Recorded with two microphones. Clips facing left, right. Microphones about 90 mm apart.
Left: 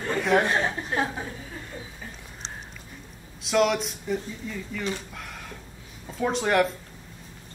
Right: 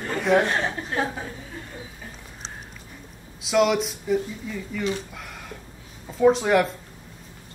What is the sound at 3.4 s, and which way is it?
Speech, centre (ahead or behind).